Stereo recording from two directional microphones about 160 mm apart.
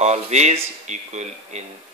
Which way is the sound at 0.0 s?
45° right (ahead or behind).